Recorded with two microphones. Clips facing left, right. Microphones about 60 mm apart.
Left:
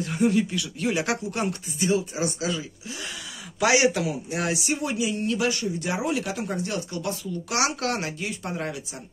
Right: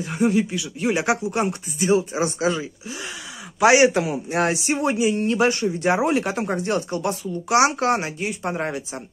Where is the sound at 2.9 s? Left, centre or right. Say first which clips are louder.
Right 3 dB; right.